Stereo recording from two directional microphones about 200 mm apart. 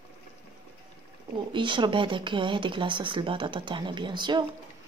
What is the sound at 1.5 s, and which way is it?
Speech, 25° right (ahead or behind).